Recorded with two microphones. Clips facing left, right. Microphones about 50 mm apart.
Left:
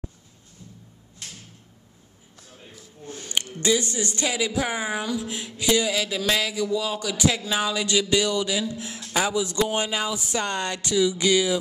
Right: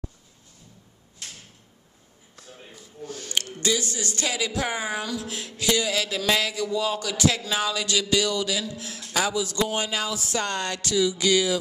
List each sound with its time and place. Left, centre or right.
3.1 s a sound: left
3.6 s a woman's voice: left
8.0 s a man's voice: left